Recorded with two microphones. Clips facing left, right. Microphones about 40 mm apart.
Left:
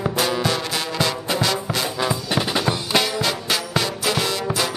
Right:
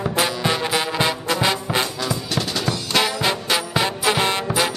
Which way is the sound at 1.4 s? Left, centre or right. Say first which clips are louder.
Right 3 dB; right.